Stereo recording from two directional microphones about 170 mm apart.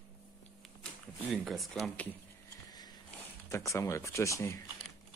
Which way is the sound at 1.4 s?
Centre (ahead or behind).